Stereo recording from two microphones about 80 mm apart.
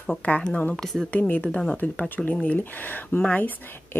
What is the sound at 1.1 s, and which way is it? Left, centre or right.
Speech, centre.